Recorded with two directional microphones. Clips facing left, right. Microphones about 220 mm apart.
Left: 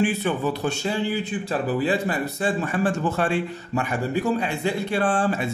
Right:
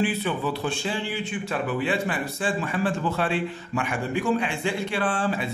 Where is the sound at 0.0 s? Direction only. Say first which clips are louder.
Left 3 dB; 45° left (ahead or behind).